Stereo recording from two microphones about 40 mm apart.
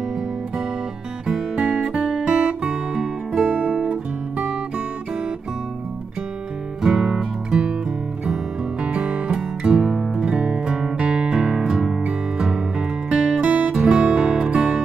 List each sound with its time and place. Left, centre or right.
1.2 s music: centre
3.6 s guitar: right
6.8 s music: centre
8.8 s music: right
13.4 s music: right
13.7 s music: right